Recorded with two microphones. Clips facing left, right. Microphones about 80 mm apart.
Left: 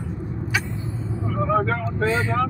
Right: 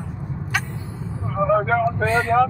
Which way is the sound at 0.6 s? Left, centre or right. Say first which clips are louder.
Left 2 dB; right.